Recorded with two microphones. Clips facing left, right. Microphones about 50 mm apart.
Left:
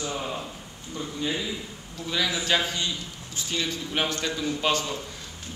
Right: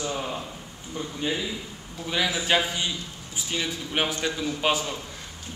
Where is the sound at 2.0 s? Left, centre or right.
Centre.